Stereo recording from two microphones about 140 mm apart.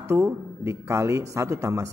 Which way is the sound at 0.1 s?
20° right (ahead or behind).